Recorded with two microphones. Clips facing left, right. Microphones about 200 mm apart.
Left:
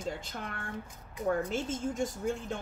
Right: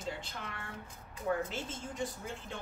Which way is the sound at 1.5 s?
45° left (ahead or behind).